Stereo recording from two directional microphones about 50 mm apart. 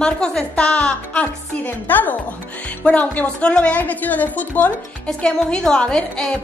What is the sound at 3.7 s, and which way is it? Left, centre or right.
A woman's voice, left.